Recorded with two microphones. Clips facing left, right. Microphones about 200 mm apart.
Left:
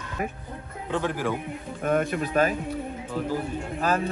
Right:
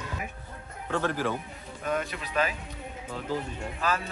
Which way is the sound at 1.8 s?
50° left (ahead or behind).